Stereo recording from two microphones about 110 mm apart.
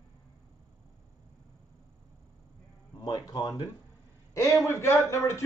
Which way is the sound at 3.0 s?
40° left (ahead or behind).